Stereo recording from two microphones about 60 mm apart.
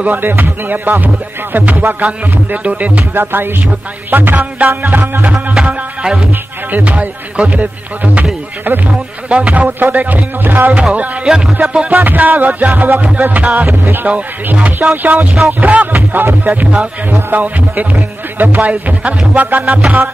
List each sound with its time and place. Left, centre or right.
0.0 s music: right
3.2 s music: right
5.2 s speech: centre
6.7 s music: right
10.7 s speech: centre
11.9 s music: right